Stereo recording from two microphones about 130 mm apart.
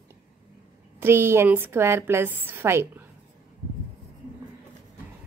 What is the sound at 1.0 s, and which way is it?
A woman's voice, 20° right (ahead or behind).